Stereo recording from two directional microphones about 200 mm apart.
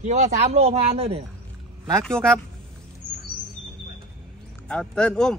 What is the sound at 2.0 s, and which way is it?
Speech, 5° left (ahead or behind).